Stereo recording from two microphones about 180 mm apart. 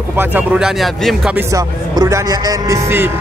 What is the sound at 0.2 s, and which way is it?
Speech, 10° right (ahead or behind).